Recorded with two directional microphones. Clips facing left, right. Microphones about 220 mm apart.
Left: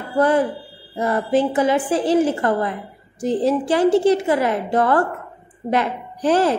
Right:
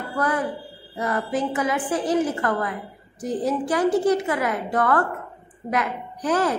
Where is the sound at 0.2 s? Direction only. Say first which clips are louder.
Left 8 dB; 30° left (ahead or behind).